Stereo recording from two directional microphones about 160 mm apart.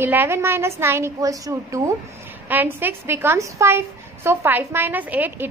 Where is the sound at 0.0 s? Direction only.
15° right (ahead or behind).